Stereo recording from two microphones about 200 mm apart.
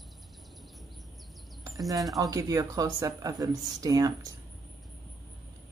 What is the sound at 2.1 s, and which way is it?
Speech, 15° right (ahead or behind).